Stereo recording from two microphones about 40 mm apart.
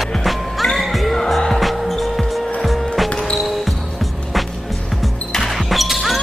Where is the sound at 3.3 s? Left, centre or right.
Centre.